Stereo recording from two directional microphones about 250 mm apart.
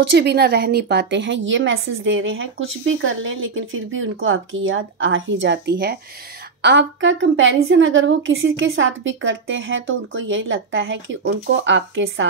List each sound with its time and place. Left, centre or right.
0.0 s a woman's voice: right